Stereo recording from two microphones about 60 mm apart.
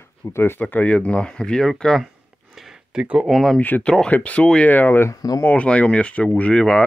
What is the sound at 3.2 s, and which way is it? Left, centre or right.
Speech, centre.